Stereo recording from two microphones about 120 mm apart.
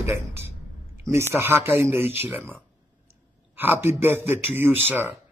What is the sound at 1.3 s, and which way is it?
Speech, 20° right (ahead or behind).